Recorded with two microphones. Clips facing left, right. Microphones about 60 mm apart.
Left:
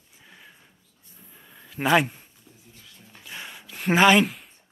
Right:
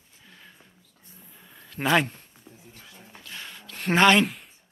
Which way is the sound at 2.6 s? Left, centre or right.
Right.